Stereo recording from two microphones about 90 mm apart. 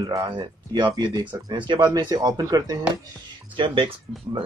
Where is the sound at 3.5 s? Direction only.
70° right (ahead or behind).